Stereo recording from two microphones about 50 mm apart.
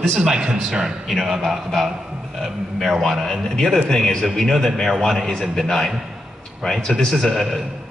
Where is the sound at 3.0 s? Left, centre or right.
Centre.